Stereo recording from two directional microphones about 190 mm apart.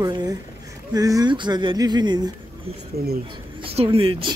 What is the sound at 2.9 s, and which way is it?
Speech, 55° right (ahead or behind).